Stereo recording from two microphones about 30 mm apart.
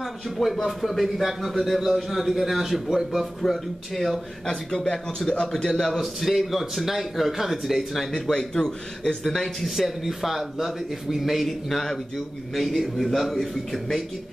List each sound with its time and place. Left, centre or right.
0.0 s speech: centre
3.4 s speech: centre
4.5 s a man's voice: left
5.9 s speech: centre
8.1 s a man's voice: centre
9.8 s a man's voice: centre
11.4 s a man's voice: centre
12.5 s speech: centre